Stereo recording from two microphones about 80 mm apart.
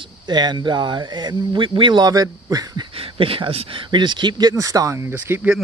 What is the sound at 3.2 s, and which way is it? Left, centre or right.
Speech, right.